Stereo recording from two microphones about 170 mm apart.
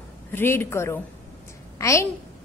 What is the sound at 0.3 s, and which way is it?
A woman's voice, 10° left (ahead or behind).